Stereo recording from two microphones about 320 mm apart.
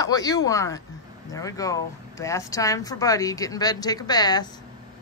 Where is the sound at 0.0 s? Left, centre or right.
Centre.